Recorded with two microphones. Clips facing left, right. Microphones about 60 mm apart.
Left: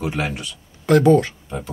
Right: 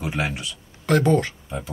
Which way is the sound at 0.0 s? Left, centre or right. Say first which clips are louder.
Left 2 dB; centre.